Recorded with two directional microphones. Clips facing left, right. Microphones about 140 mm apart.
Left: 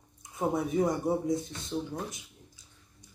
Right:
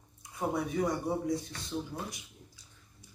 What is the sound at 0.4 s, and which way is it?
Speech, 20° left (ahead or behind).